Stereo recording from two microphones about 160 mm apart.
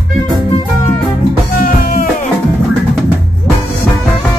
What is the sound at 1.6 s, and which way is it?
Music, 60° left (ahead or behind).